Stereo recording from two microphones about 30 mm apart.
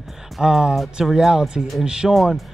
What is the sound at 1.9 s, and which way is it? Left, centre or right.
Speech, right.